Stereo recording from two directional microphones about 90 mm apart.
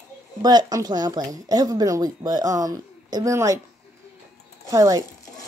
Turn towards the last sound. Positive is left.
turn(degrees=-40)  # may be behind; listen again after turning